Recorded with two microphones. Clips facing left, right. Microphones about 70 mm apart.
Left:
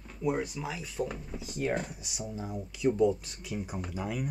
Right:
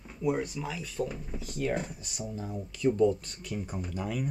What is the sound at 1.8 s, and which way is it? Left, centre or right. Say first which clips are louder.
Speech: right 1 dB; centre.